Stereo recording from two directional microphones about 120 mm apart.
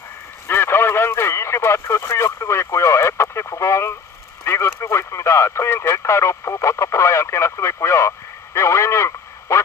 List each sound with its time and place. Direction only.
0.5 s radio: 20° left (ahead or behind)
4.5 s a man's voice: 20° left (ahead or behind)